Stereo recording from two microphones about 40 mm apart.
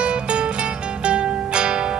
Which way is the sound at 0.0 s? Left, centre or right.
Right.